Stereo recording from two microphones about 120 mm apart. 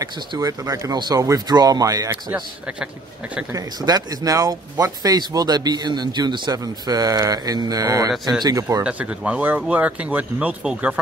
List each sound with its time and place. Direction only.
0.0 s speech: 30° right (ahead or behind)
3.5 s speech: 30° right (ahead or behind)
8.8 s speech: 10° right (ahead or behind)